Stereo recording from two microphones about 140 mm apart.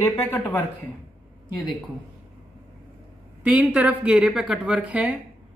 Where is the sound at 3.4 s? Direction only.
10° right (ahead or behind).